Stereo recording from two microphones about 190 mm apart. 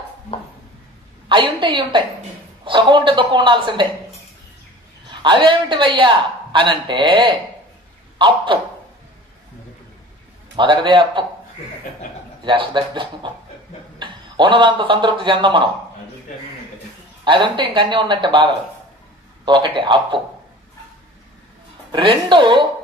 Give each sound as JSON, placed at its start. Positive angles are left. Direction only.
{"t": 1.3, "sound": "speech", "side_deg": -25}
{"t": 5.1, "sound": "speech", "side_deg": -25}
{"t": 10.5, "sound": "speech", "side_deg": -25}
{"t": 12.4, "sound": "a man's voice", "side_deg": -25}
{"t": 17.2, "sound": "speech", "side_deg": -25}
{"t": 21.9, "sound": "speech", "side_deg": -25}